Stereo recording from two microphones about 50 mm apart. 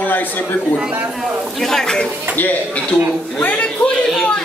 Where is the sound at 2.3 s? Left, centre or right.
Left.